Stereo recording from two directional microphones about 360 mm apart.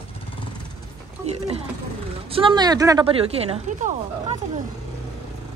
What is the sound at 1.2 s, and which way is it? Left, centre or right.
Speech, centre.